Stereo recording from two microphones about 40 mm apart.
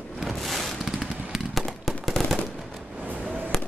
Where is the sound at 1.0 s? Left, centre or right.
Centre.